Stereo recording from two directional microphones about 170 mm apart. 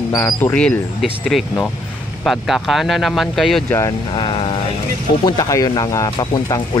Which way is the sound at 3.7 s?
25° left (ahead or behind).